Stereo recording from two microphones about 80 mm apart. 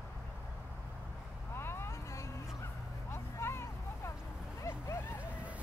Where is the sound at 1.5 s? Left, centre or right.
Left.